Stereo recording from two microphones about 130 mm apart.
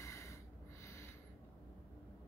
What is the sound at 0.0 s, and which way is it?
Snort, 20° left (ahead or behind).